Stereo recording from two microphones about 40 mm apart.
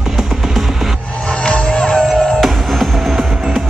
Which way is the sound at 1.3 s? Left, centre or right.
Left.